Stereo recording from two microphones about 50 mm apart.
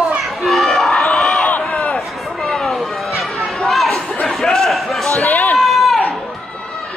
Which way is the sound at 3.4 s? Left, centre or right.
Centre.